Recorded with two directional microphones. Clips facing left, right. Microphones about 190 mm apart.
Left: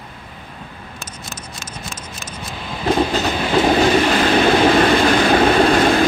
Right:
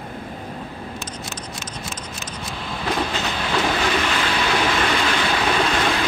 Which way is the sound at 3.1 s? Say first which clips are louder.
Left 6 dB; 35° left (ahead or behind).